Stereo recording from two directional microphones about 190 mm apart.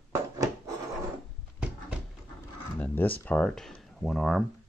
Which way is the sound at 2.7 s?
10° left (ahead or behind).